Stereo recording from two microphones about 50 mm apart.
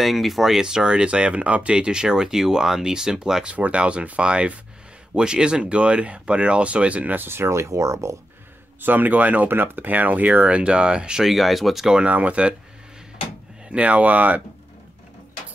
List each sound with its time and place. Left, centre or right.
0.0 s speech: centre
3.4 s speech: right
7.2 s speech: right
8.8 s speech: right
9.5 s speech: right; by 11.2 s centre
11.2 s speech: centre
12.1 s speech: right
13.7 s speech: right